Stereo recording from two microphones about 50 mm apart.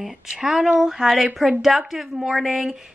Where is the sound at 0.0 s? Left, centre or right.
Centre.